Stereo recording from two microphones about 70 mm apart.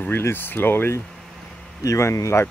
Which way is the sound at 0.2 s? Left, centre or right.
Left.